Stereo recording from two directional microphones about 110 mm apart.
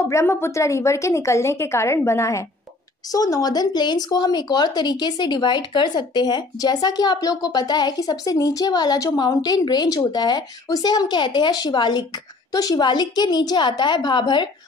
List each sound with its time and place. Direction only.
0.0 s a woman's voice: 25° left (ahead or behind); by 14.5 s 45° left (ahead or behind)